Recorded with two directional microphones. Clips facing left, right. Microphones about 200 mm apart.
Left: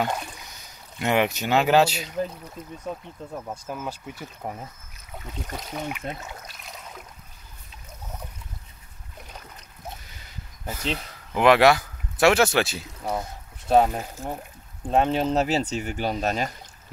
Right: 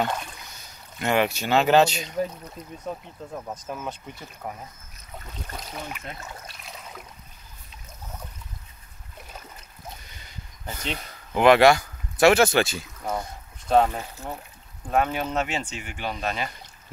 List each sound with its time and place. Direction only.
0.0 s speech: 10° left (ahead or behind)
4.2 s speech: 20° left (ahead or behind)
5.9 s speech: 15° left (ahead or behind)
6.4 s a sound: centre (ahead or behind)
10.0 s speech: 5° left (ahead or behind)
14.9 s speech: 30° left (ahead or behind)